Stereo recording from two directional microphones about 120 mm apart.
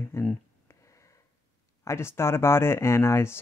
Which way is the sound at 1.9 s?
20° left (ahead or behind).